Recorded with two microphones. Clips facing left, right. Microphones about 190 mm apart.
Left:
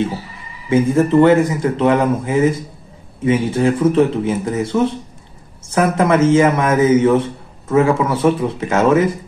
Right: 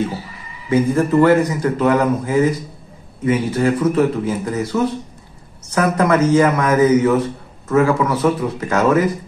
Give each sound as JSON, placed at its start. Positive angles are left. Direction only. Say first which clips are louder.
{"t": 0.7, "sound": "a man's voice", "louder": "left 2 dB", "side_deg": 25}